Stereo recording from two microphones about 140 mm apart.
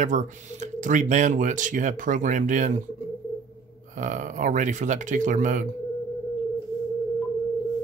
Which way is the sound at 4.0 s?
65° right (ahead or behind).